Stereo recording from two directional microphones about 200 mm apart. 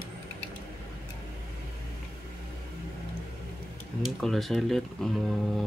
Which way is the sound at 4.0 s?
Centre (ahead or behind).